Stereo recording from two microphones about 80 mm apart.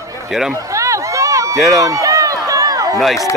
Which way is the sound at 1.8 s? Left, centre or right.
Right.